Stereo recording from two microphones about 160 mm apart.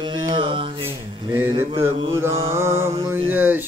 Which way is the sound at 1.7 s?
35° right (ahead or behind).